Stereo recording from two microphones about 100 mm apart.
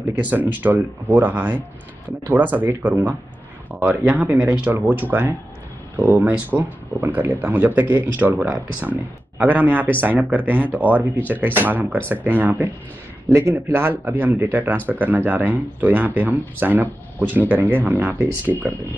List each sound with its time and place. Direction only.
0.2 s speech: 15° right (ahead or behind)
13.3 s speech: 30° right (ahead or behind)